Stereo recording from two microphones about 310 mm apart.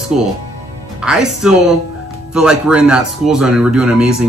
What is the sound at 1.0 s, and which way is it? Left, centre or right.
Speech, centre.